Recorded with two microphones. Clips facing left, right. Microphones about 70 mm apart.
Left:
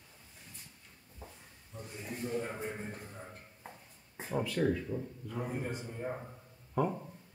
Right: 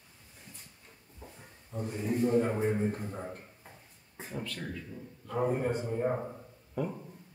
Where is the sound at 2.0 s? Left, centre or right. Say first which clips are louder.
Right 10 dB; right.